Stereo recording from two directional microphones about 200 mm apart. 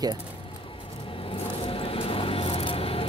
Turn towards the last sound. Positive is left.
turn(degrees=30)  # may be behind; listen again after turning